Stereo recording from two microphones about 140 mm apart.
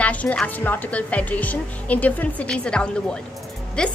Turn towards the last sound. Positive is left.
turn(degrees=5)  # may be behind; listen again after turning